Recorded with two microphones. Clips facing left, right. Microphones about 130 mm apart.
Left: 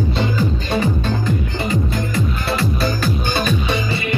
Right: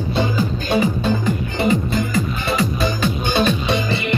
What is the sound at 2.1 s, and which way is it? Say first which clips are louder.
Music: even; centre (ahead or behind).